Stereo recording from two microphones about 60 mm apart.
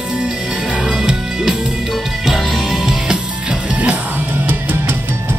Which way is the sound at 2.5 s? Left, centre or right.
Centre.